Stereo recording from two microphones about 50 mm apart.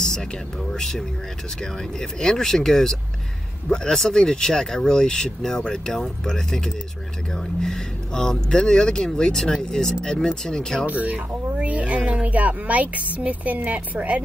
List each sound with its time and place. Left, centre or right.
0.0 s speech: centre
10.9 s speech: right